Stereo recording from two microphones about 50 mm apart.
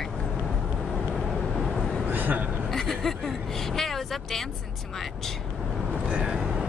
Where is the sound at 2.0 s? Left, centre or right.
Right.